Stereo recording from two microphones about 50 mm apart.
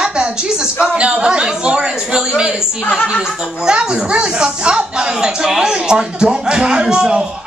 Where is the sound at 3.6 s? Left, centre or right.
Centre.